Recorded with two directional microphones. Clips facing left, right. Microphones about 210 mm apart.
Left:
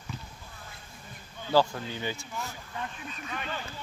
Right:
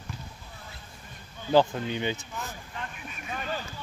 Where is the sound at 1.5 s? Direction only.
20° right (ahead or behind).